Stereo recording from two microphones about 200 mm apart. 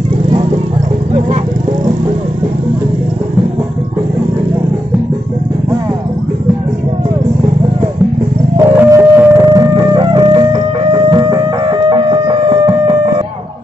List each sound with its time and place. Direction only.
8.5 s music: 15° right (ahead or behind)